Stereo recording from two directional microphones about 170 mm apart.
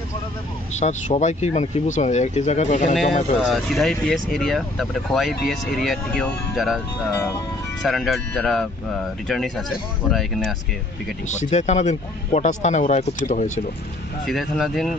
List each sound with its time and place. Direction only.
0.7 s speech: 45° left (ahead or behind)
3.3 s speech: centre (ahead or behind)
7.8 s speech: centre (ahead or behind)
11.2 s speech: 45° left (ahead or behind)
14.2 s speech: centre (ahead or behind)